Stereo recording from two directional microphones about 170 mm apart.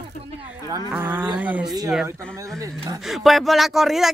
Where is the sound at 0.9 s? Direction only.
10° right (ahead or behind).